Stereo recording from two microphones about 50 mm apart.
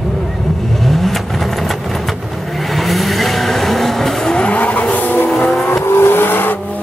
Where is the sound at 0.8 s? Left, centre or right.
Centre.